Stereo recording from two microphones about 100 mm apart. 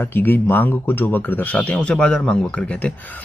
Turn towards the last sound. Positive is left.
turn(degrees=15)  # may be behind; listen again after turning